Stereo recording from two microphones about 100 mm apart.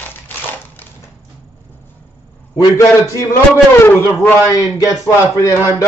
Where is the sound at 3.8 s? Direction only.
20° left (ahead or behind).